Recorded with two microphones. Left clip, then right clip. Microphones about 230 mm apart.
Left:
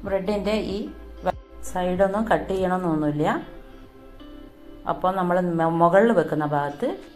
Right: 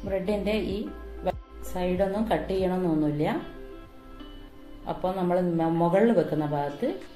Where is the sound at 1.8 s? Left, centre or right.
Left.